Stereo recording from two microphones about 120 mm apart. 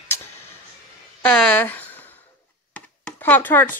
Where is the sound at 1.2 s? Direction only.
10° left (ahead or behind).